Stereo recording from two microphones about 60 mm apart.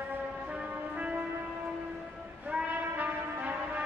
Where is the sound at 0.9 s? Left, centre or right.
Right.